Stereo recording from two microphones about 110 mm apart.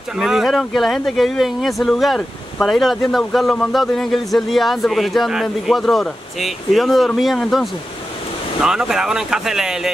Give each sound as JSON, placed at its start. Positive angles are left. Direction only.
{"t": 0.2, "sound": "speech", "side_deg": 0}
{"t": 8.6, "sound": "speech", "side_deg": -5}